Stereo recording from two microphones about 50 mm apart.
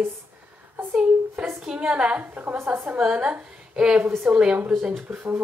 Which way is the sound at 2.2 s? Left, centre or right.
Right.